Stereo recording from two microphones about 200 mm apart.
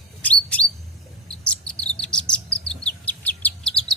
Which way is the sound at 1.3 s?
5° left (ahead or behind).